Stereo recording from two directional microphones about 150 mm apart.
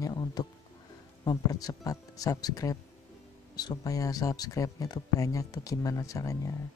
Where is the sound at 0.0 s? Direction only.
25° left (ahead or behind).